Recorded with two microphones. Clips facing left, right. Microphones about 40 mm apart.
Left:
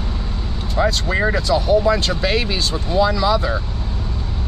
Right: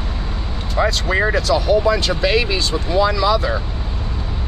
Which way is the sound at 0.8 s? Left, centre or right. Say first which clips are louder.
Right 1 dB; right.